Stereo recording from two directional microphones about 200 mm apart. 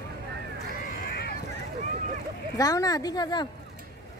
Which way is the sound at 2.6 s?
20° left (ahead or behind).